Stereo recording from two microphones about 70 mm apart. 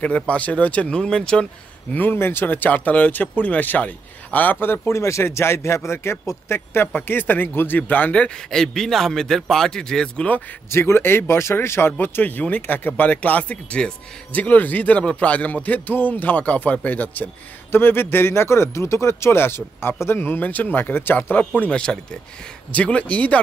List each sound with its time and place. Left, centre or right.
0.0 s speech: centre
2.0 s speech: left
4.8 s speech: left
8.5 s speech: centre
10.7 s speech: left
21.5 s speech: centre